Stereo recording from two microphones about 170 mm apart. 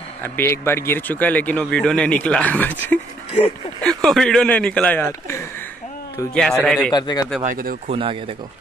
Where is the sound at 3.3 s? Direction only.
35° left (ahead or behind).